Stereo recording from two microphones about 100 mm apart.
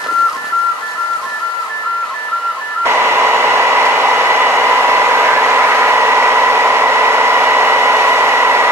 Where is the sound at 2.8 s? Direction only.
25° right (ahead or behind).